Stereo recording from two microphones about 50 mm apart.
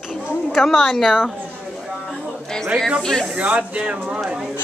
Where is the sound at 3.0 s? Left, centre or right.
Centre.